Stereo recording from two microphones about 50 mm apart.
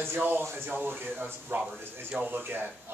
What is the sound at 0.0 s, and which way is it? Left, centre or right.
Speech, right.